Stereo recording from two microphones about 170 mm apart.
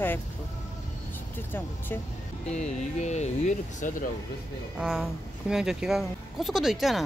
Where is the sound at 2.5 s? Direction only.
40° left (ahead or behind).